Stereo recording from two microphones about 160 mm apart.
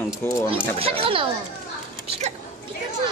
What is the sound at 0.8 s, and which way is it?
Speech, 35° right (ahead or behind).